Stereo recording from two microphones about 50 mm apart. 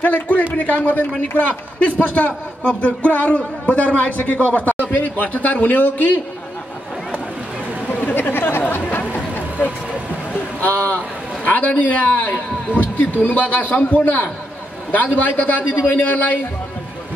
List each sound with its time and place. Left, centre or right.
0.0 s a man's voice: left
7.9 s a sound: left
8.2 s chatter: left
10.6 s a man's voice: left
15.3 s a man's voice: left